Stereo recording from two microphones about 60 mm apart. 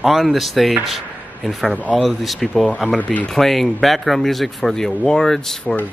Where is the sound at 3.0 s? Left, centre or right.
Left.